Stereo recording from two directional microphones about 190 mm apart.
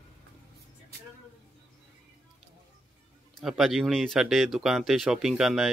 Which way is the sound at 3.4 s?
Centre (ahead or behind).